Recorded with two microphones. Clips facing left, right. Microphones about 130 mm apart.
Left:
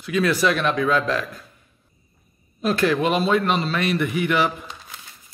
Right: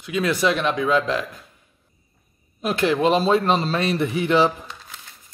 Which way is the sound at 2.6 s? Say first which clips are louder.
Even; 20° right (ahead or behind).